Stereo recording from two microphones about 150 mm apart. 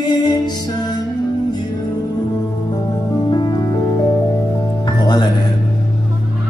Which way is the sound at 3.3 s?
30° left (ahead or behind).